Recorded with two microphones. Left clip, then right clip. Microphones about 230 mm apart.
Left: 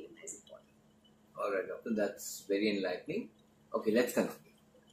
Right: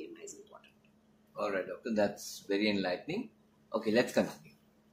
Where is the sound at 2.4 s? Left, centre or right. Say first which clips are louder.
Right 1 dB; right.